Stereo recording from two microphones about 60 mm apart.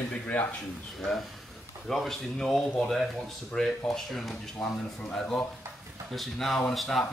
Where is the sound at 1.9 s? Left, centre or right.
Centre.